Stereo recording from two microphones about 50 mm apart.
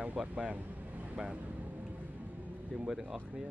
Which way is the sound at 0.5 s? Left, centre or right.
Right.